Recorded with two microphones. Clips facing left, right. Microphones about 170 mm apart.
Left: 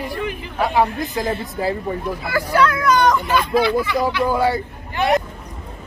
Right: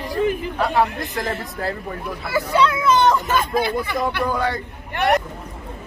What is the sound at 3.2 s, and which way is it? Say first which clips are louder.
Speech: left 2 dB; 45° right (ahead or behind).